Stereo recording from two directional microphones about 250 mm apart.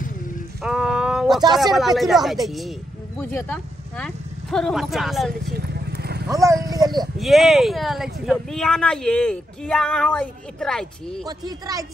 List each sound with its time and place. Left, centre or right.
0.6 s a sound: centre
1.6 s speech: centre
5.4 s vehicle: right
6.2 s speech: centre
7.2 s speech: centre
11.2 s speech: centre